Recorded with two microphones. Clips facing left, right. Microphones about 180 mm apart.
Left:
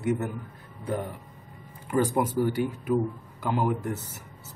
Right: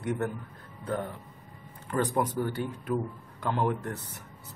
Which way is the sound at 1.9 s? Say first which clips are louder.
Left 3 dB; 10° left (ahead or behind).